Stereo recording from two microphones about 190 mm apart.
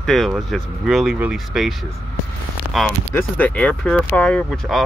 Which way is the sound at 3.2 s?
10° left (ahead or behind).